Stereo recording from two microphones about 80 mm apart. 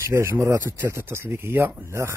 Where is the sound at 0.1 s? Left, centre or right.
Right.